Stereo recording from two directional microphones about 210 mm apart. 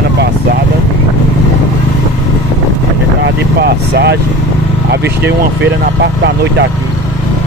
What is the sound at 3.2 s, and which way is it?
Speech, 50° right (ahead or behind).